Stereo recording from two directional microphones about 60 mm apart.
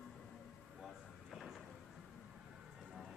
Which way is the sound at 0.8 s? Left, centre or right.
Centre.